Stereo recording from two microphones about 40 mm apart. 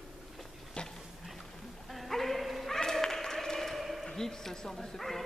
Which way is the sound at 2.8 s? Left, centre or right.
Centre.